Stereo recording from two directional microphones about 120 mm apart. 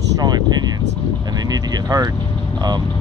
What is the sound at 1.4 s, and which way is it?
Speech, 30° right (ahead or behind).